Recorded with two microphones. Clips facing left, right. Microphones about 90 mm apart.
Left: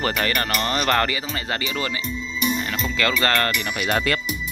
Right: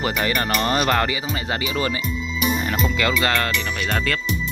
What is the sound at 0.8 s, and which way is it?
Speech, 15° right (ahead or behind).